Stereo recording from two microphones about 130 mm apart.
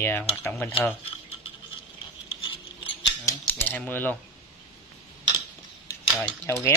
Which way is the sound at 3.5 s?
15° left (ahead or behind).